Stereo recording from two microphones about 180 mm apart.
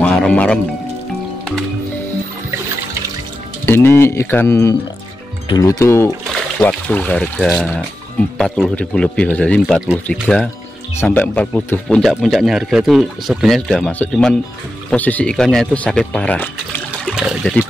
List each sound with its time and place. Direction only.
0.0 s music: 5° left (ahead or behind)
3.6 s speech: 15° left (ahead or behind)
17.1 s speech: centre (ahead or behind)